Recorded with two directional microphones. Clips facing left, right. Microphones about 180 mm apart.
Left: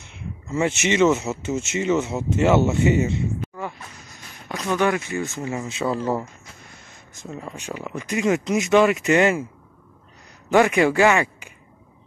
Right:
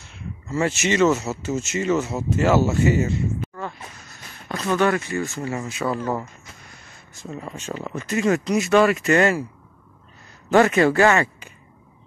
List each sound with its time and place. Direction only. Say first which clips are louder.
0.0 s speech: even; 20° left (ahead or behind)
4.5 s speech: right 1 dB; 10° left (ahead or behind)
7.5 s speech: right 2 dB; 15° left (ahead or behind)
10.5 s speech: right 1 dB; 15° left (ahead or behind)